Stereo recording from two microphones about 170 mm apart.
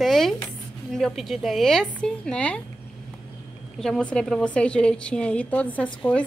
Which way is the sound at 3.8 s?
5° left (ahead or behind).